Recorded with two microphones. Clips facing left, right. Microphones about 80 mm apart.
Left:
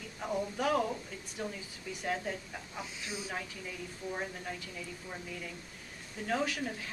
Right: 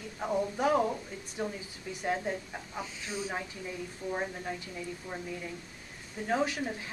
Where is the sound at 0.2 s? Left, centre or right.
Centre.